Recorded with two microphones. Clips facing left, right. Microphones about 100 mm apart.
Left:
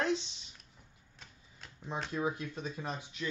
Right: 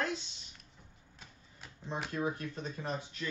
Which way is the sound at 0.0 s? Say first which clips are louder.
Left 4 dB; 25° left (ahead or behind).